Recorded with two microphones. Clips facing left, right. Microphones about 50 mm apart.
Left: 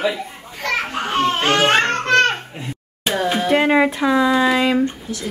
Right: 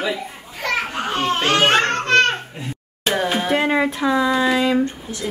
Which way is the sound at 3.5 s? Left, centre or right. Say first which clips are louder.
Left 5 dB; centre.